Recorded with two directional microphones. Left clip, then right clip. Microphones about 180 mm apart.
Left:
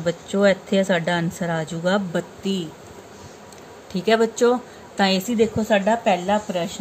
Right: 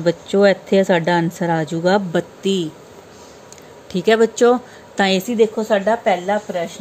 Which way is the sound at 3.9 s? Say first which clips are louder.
Right 4 dB; 35° right (ahead or behind).